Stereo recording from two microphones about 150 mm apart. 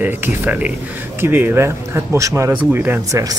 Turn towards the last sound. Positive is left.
turn(degrees=-20)  # may be behind; listen again after turning